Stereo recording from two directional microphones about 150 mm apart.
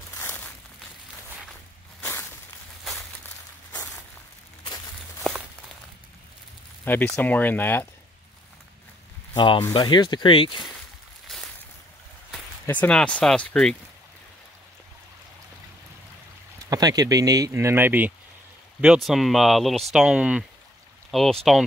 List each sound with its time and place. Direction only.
0.1 s a sound: 15° left (ahead or behind)
2.0 s crushing: 15° left (ahead or behind)
6.8 s speech: 10° left (ahead or behind)
9.3 s speech: 30° left (ahead or behind)
11.2 s boat: centre (ahead or behind)
12.6 s speech: 10° left (ahead or behind)
16.6 s speech: 25° right (ahead or behind)
19.0 s speech: centre (ahead or behind)